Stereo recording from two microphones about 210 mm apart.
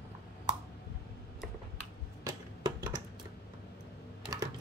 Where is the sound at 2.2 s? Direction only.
20° right (ahead or behind).